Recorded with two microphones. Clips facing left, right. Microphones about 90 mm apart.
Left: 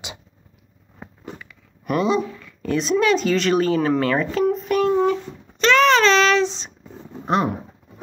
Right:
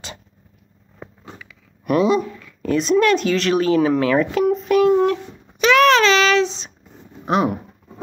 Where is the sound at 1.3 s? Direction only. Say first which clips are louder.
Even; centre (ahead or behind).